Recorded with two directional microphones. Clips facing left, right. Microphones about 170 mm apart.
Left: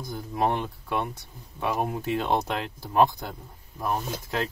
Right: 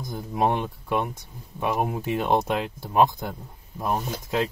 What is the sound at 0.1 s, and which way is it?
Speech, 15° right (ahead or behind).